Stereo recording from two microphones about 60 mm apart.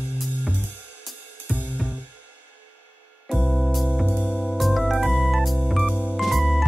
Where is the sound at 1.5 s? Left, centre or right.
Right.